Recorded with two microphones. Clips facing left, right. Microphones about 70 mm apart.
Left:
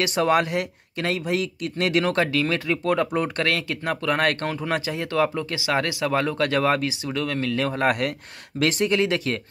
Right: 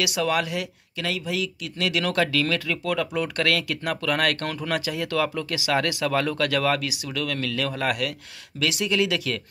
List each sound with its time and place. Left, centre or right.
0.0 s speech: left
2.0 s speech: left